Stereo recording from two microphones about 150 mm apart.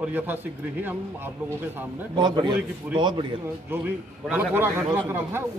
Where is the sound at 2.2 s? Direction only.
30° right (ahead or behind).